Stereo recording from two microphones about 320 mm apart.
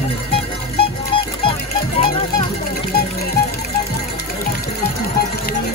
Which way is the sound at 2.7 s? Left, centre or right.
Left.